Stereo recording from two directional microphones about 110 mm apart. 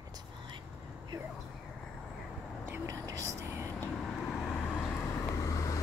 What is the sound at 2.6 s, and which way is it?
Whispering, 25° right (ahead or behind).